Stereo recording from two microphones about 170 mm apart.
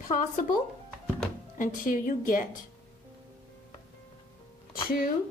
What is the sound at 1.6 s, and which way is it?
Speech, 50° left (ahead or behind).